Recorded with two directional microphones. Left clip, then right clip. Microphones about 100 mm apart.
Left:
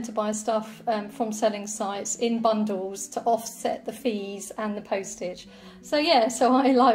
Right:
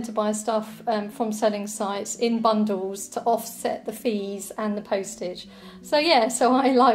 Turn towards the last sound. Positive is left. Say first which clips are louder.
# right 1 dB
turn(degrees=-40)  # may be behind; listen again after turning